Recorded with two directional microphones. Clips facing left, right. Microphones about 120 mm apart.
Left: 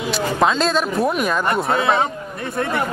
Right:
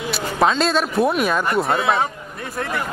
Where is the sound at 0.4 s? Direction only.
Centre (ahead or behind).